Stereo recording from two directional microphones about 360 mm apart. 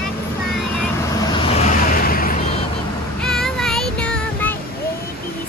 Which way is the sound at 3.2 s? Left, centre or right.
Centre.